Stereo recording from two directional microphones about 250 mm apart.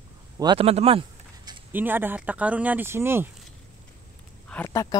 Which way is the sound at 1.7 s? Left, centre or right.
Centre.